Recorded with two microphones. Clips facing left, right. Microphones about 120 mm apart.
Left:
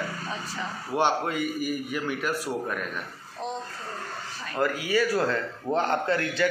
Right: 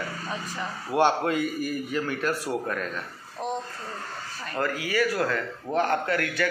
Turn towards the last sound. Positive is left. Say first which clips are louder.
# left 1 dB
turn(degrees=25)  # may be behind; listen again after turning